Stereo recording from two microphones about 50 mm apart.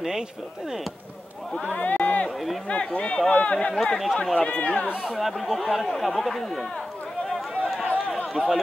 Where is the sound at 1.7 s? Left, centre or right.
Left.